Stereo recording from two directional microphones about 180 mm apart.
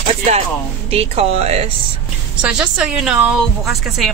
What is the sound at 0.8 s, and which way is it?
Speech, 35° right (ahead or behind).